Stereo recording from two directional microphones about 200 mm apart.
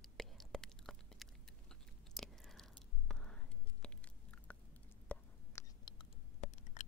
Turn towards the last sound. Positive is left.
turn(degrees=35)  # may be behind; listen again after turning